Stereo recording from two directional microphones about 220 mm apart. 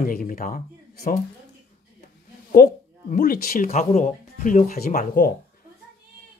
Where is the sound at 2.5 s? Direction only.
35° left (ahead or behind).